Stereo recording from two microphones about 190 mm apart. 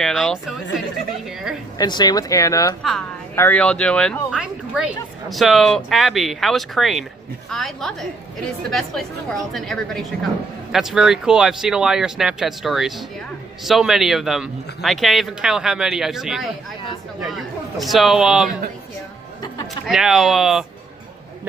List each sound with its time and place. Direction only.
0.0 s speech: centre (ahead or behind)
1.8 s speech: 20° left (ahead or behind); by 18.5 s centre (ahead or behind)
19.9 s speech: centre (ahead or behind)